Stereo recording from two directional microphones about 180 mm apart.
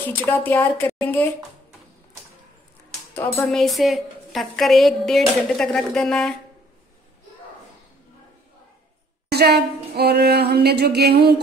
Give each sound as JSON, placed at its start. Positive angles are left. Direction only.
{"t": 0.2, "sound": "a woman's voice", "side_deg": 10}
{"t": 3.2, "sound": "a woman's voice", "side_deg": 10}
{"t": 9.3, "sound": "speech", "side_deg": -65}